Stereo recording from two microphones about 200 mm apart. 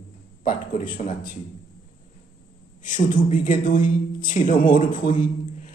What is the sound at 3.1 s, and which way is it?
A man's voice, 40° left (ahead or behind).